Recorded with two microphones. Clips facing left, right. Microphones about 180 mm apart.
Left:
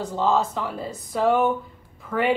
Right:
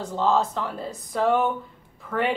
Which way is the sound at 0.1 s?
5° left (ahead or behind).